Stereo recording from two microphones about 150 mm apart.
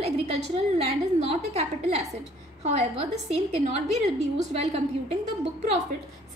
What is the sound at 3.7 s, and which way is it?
Speech, 50° right (ahead or behind).